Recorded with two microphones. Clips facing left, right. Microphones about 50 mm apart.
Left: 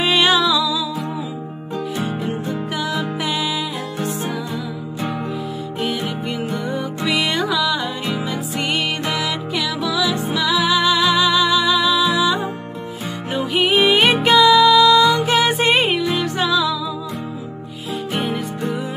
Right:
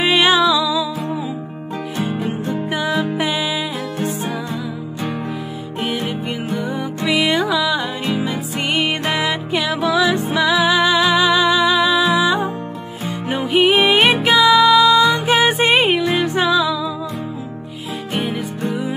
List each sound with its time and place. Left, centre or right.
0.0 s music: centre
2.0 s music: right
6.5 s music: centre
8.1 s music: right
13.6 s music: centre
15.0 s music: right
18.1 s music: centre